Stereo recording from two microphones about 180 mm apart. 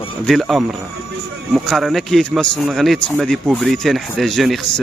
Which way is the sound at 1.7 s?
Centre (ahead or behind).